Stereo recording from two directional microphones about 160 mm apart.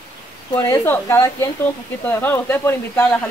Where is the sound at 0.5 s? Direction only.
15° left (ahead or behind).